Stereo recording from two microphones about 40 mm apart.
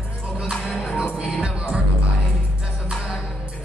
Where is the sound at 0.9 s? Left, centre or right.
Right.